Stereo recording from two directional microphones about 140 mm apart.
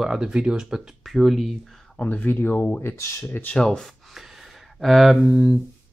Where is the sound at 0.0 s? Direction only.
5° right (ahead or behind).